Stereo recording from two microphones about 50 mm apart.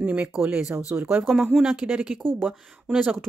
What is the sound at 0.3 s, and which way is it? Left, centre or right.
Speech, centre.